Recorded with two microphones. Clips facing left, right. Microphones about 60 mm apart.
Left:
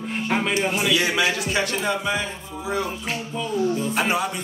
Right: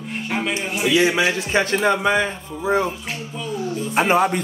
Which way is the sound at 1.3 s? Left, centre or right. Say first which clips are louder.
Right 4 dB; right.